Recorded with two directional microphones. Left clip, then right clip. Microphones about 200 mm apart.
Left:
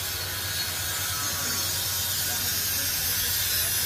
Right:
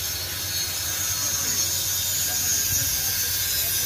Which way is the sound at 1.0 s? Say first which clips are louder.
Right 3 dB; 35° right (ahead or behind).